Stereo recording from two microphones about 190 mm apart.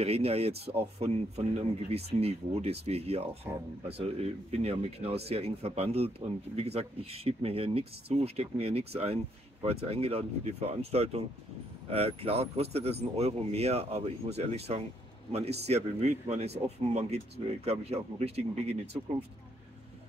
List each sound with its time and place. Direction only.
0.0 s speech: 30° right (ahead or behind)